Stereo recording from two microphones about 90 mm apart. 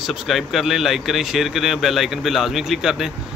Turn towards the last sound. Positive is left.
turn(degrees=-5)  # may be behind; listen again after turning